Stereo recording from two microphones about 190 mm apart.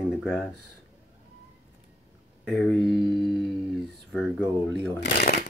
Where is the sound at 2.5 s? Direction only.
Centre (ahead or behind).